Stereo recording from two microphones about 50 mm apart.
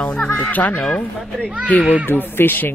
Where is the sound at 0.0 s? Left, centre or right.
Left.